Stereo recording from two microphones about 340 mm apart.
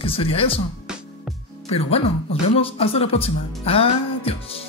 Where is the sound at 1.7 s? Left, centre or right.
Centre.